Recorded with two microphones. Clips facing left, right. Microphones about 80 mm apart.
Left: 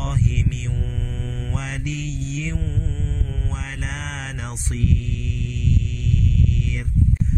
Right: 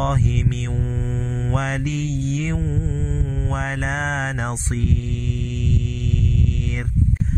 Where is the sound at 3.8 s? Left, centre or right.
Right.